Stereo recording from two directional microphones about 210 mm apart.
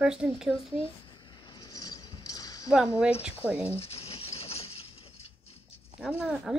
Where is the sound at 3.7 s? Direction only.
25° left (ahead or behind).